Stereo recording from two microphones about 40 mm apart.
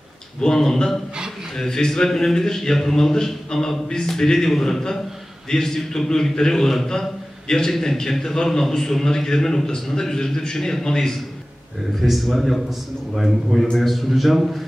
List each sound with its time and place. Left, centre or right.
0.4 s a man's voice: centre
11.9 s a man's voice: centre